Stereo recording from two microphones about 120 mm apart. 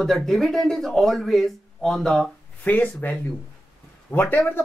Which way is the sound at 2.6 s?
15° left (ahead or behind).